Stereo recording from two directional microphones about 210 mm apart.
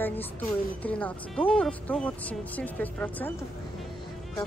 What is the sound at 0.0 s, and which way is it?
Speech, 10° left (ahead or behind).